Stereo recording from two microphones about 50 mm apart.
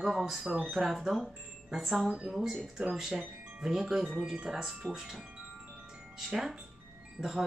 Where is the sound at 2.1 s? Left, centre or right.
Centre.